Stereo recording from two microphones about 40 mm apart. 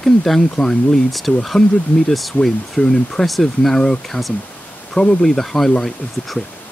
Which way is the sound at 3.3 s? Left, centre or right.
Centre.